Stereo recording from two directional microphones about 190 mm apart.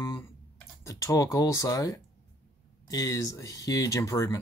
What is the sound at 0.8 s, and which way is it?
Speech, 15° left (ahead or behind).